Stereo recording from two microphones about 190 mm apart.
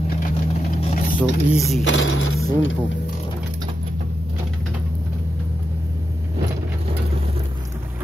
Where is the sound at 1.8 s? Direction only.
85° left.